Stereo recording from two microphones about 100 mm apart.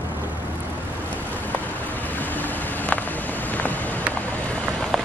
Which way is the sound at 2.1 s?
15° left (ahead or behind).